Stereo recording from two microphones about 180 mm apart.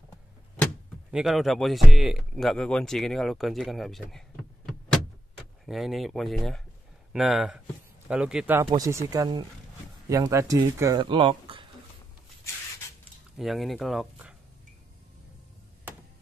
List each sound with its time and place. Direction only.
1.1 s speech: centre (ahead or behind)
4.6 s a sound: centre (ahead or behind)
5.7 s speech: centre (ahead or behind)
8.7 s speech: 15° right (ahead or behind)
13.4 s speech: centre (ahead or behind)